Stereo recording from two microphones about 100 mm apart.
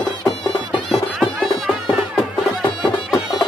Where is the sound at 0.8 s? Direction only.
Centre (ahead or behind).